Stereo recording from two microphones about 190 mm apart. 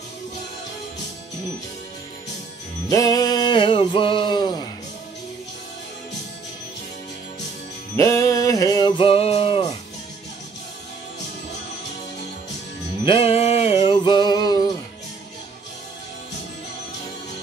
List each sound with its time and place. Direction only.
2.9 s music: 20° left (ahead or behind)
7.9 s music: 15° left (ahead or behind); by 9.8 s 30° left (ahead or behind)
13.0 s music: 30° left (ahead or behind)